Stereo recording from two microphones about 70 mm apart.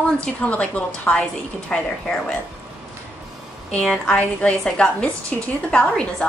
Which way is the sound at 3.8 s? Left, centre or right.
Centre.